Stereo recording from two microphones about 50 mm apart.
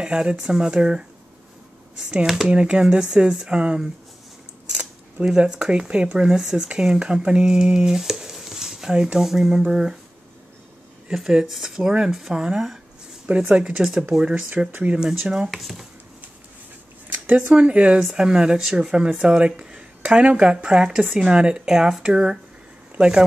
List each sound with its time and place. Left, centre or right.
0.0 s speech: centre
5.2 s speech: centre
11.1 s speech: centre
12.1 s speech: centre
13.3 s speech: right
14.1 s speech: centre
15.5 s speech: centre
17.1 s speech: right
18.0 s speech: centre
21.0 s speech: centre
21.3 s speech: centre